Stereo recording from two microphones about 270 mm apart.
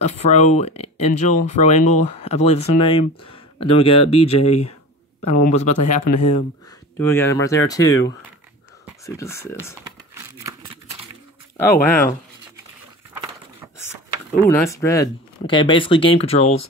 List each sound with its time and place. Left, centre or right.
0.0 s speech: left
7.0 s speech: centre
9.0 s speech: centre
10.1 s a sound: centre
11.8 s speech: centre
14.4 s speech: centre